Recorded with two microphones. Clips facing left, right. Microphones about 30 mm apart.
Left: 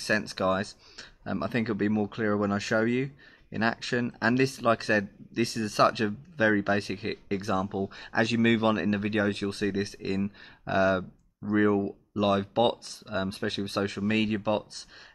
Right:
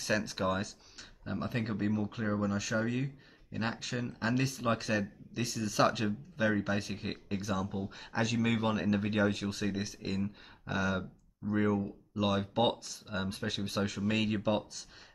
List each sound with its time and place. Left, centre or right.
0.2 s speech: left
1.2 s speech: left
5.8 s speech: left
6.6 s speech: left
8.1 s speech: left
8.7 s speech: left
10.6 s speech: left
11.5 s speech: left